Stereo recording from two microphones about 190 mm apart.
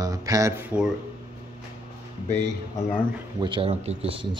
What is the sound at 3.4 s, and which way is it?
Speech, 30° right (ahead or behind).